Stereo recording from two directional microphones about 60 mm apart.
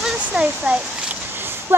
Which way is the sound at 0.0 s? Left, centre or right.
Centre.